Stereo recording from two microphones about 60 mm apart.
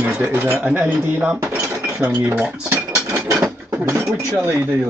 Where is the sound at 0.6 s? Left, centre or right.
Right.